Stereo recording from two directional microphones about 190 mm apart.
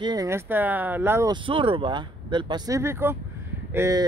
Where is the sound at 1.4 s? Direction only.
25° right (ahead or behind).